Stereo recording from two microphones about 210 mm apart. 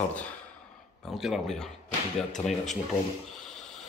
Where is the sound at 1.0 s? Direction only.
Centre (ahead or behind).